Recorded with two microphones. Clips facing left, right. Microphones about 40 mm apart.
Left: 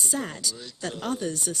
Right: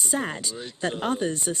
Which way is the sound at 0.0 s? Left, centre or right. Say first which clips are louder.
Right 2 dB; right.